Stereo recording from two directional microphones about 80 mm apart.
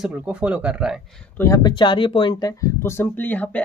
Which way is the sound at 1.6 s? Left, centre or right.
Left.